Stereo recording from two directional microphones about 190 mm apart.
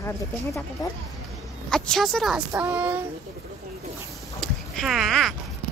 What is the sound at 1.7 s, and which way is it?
Speech, centre (ahead or behind).